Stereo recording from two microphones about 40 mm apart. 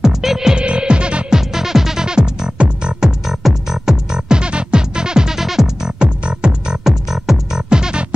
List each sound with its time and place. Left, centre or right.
0.0 s music: centre
0.6 s music: right
1.3 s music: centre
5.9 s music: right
6.8 s music: centre
7.7 s music: right